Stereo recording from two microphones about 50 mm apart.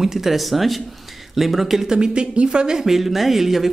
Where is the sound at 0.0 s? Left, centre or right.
Centre.